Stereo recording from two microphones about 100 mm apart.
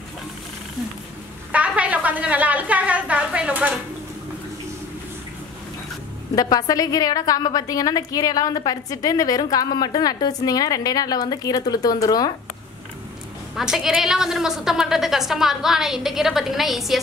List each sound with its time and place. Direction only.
1.5 s a sound: 15° right (ahead or behind)
6.3 s a woman's voice: 40° left (ahead or behind)
13.6 s a woman's voice: 5° right (ahead or behind)